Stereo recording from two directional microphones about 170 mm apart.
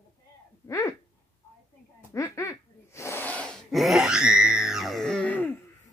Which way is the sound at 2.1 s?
15° left (ahead or behind).